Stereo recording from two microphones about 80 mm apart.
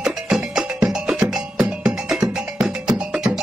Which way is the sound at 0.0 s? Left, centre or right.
Centre.